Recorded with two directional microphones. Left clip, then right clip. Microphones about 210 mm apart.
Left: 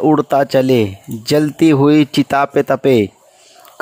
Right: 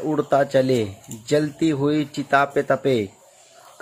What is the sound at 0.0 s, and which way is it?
Speech, 45° left (ahead or behind).